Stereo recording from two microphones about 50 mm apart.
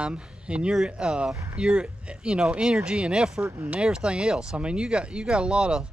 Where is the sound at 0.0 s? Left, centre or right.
Right.